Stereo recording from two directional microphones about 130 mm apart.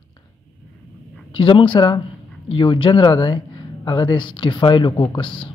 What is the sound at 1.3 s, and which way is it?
Speech, 40° left (ahead or behind).